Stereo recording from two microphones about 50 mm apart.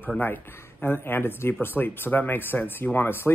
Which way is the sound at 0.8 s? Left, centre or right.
Left.